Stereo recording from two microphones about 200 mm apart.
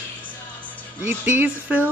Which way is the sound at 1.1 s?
10° right (ahead or behind).